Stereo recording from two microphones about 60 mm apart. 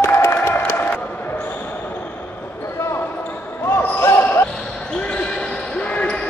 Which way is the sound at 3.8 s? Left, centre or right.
Left.